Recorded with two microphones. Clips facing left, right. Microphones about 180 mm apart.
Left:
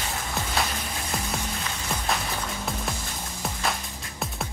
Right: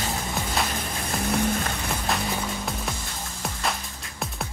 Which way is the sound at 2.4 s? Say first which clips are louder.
Right 1 dB; centre (ahead or behind).